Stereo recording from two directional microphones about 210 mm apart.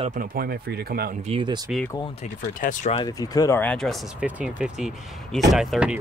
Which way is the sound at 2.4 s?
40° left (ahead or behind).